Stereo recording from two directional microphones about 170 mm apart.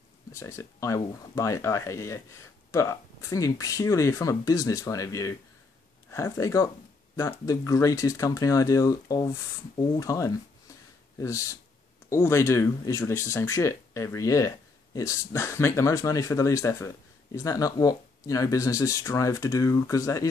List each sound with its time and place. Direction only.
0.3 s speech: 15° left (ahead or behind)